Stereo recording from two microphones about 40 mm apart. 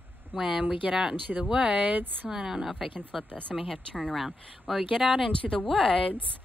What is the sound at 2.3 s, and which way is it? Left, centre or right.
A woman's voice, centre.